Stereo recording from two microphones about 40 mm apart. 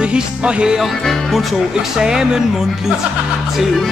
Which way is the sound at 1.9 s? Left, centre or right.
Centre.